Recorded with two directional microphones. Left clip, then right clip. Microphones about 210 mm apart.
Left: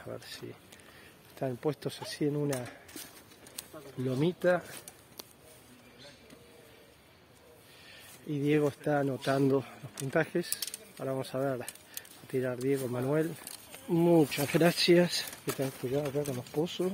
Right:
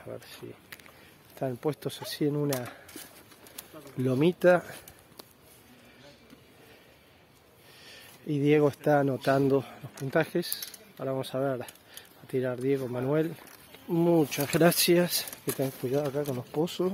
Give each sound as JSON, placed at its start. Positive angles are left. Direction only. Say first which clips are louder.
{"t": 0.0, "sound": "speech", "louder": "right 1 dB", "side_deg": 0}
{"t": 1.4, "sound": "speech", "louder": "right 2 dB", "side_deg": -15}
{"t": 4.0, "sound": "speech", "louder": "right 6 dB", "side_deg": -45}
{"t": 7.8, "sound": "speech", "louder": "right 5 dB", "side_deg": -40}
{"t": 9.4, "sound": "speech", "louder": "right 3 dB", "side_deg": -20}